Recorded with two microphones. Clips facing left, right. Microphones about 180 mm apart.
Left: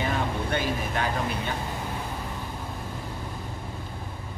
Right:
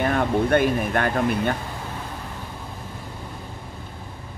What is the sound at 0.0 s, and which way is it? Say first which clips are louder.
Speech: right 7 dB; 55° right (ahead or behind).